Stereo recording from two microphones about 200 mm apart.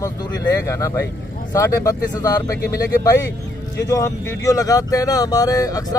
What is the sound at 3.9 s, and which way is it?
Speech, 15° left (ahead or behind).